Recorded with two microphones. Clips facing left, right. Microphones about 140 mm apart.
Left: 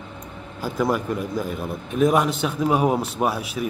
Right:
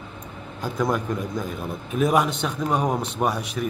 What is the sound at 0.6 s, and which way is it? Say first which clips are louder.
A man's voice: left 2 dB; 5° left (ahead or behind).